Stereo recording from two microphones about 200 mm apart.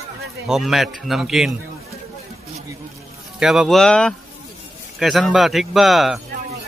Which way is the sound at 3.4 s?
Centre (ahead or behind).